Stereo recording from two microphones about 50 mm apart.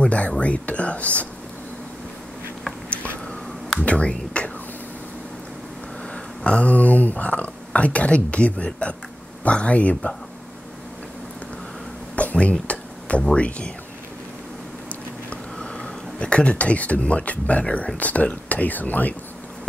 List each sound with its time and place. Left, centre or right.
0.0 s speech: left
3.8 s speech: left
6.4 s speech: left
12.2 s a sound: left
13.4 s speech: left
15.2 s speech: centre; by 19.1 s left